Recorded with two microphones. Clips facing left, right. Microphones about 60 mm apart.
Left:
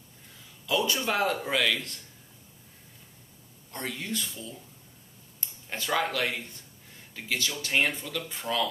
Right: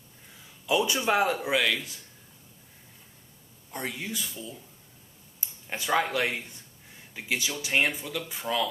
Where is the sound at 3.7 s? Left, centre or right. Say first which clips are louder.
Even; centre.